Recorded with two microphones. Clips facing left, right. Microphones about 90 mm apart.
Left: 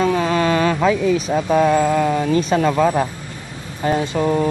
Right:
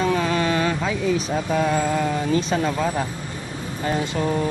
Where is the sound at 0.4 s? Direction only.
65° left (ahead or behind).